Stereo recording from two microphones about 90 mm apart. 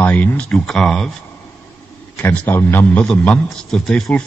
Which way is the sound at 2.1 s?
25° left (ahead or behind).